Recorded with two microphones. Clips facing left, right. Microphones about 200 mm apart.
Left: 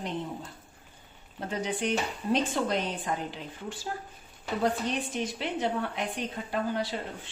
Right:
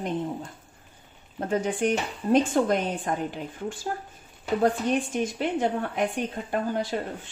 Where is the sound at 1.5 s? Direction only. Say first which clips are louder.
Right 5 dB; 50° right (ahead or behind).